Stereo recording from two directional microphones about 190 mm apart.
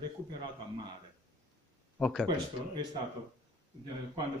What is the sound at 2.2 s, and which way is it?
Speech, 25° right (ahead or behind).